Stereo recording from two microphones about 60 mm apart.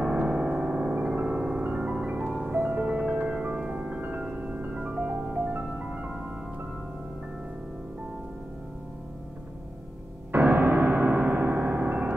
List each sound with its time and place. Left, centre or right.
0.0 s piano: right
2.5 s music: right
5.1 s music: right
10.3 s music: right